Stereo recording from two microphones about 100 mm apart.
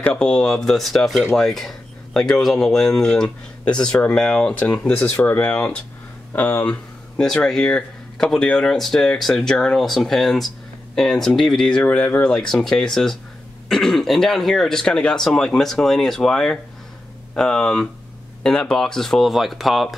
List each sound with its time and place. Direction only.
0.0 s speech: 10° left (ahead or behind)
12.3 s speech: 5° left (ahead or behind)